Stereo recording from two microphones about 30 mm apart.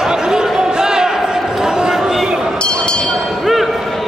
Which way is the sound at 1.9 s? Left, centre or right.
Centre.